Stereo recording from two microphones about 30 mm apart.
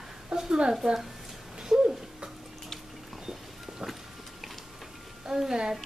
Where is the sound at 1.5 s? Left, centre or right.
Right.